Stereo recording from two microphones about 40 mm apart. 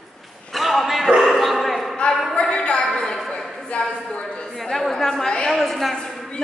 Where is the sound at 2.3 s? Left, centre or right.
Left.